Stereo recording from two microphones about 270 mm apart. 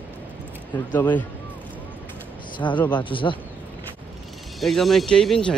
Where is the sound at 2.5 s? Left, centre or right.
Centre.